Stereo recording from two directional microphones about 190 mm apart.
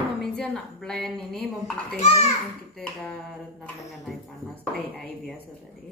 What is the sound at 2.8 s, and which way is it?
A woman's voice, 5° left (ahead or behind).